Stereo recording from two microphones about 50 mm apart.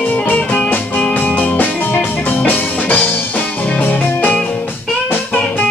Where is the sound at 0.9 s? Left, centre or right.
Left.